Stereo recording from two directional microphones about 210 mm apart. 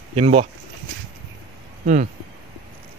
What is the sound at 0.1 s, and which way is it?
Speech, 30° right (ahead or behind).